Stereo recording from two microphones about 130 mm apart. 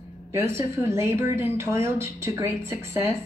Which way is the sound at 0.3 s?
20° right (ahead or behind).